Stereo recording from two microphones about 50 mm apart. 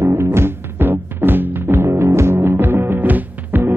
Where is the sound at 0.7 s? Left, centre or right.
Right.